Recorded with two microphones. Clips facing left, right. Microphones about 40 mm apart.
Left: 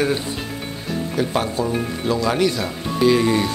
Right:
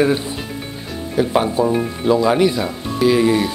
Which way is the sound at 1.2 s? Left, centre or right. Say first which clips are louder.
Right 6 dB; centre.